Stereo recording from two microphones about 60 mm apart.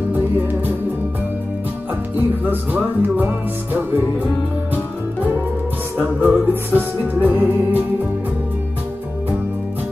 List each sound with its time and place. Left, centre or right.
2.1 s music: right
5.9 s music: right